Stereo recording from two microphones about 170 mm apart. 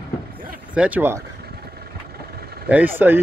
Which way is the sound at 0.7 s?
10° right (ahead or behind).